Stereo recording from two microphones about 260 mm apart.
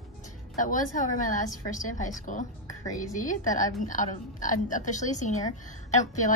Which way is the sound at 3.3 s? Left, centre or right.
Left.